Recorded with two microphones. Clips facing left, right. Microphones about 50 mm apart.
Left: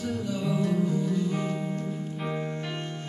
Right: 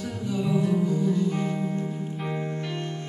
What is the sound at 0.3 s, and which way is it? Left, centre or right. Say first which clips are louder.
Music: right 5 dB; centre.